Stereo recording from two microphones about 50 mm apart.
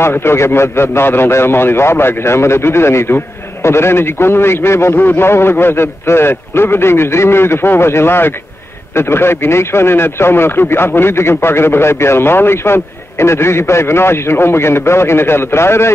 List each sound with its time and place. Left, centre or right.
0.0 s a man's voice: left
4.9 s a man's voice: left
5.2 s a man's voice: left